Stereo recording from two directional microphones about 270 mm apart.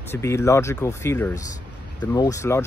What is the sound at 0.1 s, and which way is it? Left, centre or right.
Speech, centre.